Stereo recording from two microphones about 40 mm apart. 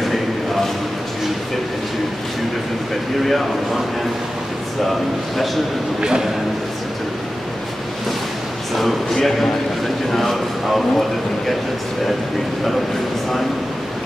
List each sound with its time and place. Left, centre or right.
0.0 s a sound: centre
3.3 s speech: centre
5.9 s speech: centre
8.7 s speech: centre